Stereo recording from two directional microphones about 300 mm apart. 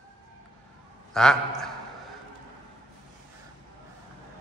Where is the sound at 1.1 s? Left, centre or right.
Centre.